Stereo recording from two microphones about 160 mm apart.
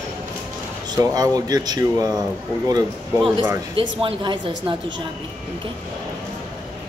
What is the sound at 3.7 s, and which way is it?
Speech, 35° right (ahead or behind).